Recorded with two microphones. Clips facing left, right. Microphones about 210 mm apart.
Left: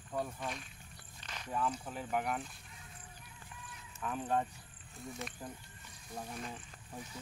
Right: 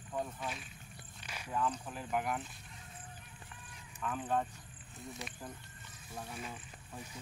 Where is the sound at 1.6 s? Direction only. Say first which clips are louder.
Right 1 dB; 10° left (ahead or behind).